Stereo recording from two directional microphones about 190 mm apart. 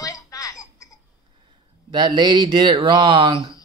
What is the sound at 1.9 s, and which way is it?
Speech, 25° right (ahead or behind).